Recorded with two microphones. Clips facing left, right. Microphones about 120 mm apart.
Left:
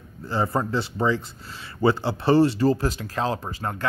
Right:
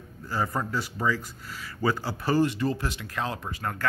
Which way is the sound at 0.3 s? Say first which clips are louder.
Left 5 dB; 25° left (ahead or behind).